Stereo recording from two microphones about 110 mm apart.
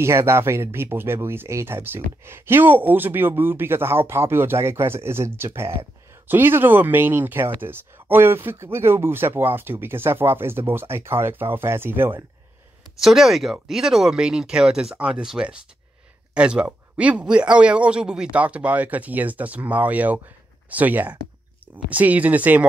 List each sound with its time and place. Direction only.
0.0 s speech: 25° right (ahead or behind)
13.0 s a man's voice: centre (ahead or behind)